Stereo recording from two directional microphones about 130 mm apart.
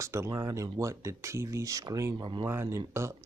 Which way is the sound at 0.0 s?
20° right (ahead or behind).